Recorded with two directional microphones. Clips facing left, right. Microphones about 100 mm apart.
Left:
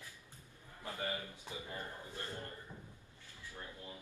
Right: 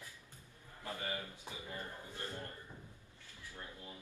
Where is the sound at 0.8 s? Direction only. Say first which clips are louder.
Left 1 dB; 20° left (ahead or behind).